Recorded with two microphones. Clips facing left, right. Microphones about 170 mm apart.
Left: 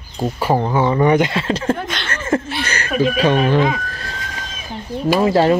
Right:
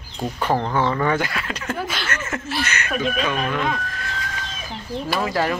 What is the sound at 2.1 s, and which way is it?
Chuckle, 30° left (ahead or behind).